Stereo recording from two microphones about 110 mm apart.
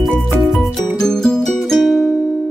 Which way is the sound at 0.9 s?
5° left (ahead or behind).